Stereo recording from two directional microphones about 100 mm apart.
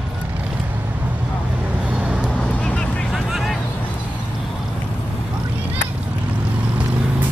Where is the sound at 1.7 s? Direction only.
15° right (ahead or behind).